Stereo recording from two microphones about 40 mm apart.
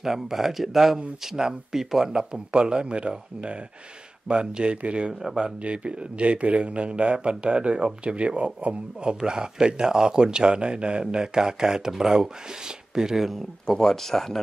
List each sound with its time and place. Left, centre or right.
0.0 s speech: centre
1.2 s speech: centre
13.7 s speech: centre